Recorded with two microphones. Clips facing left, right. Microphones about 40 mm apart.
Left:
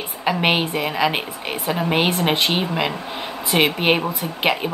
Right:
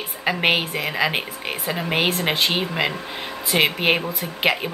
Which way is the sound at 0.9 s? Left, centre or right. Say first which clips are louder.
Left 1 dB; centre.